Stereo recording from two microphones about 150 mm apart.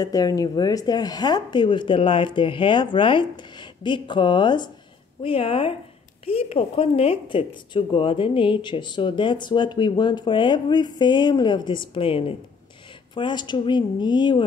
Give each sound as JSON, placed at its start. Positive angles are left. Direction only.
{"t": 0.0, "sound": "speech", "side_deg": 25}